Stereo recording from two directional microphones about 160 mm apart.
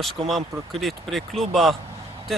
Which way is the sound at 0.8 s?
Centre (ahead or behind).